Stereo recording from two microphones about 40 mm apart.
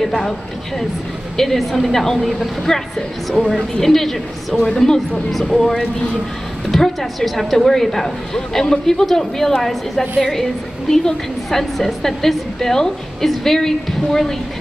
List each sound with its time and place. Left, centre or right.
0.0 s a woman's voice: centre
1.3 s a woman's voice: centre
5.3 s a woman's voice: centre
5.6 s a woman's voice: centre